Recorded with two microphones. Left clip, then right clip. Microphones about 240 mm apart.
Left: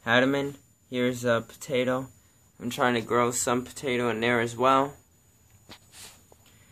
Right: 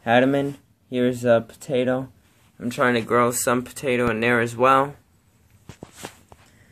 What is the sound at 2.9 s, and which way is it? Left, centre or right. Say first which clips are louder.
Speech: right 7 dB; centre.